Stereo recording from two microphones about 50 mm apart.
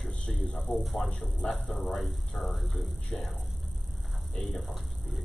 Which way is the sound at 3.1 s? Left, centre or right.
Left.